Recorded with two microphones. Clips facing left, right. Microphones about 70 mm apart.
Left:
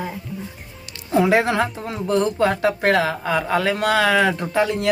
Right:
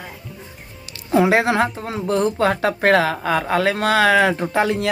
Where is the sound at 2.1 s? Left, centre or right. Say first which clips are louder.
Even; right.